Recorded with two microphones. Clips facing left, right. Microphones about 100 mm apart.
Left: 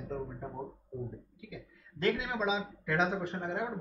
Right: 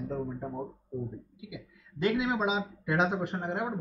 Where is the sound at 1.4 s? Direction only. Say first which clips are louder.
Right 3 dB; 15° right (ahead or behind).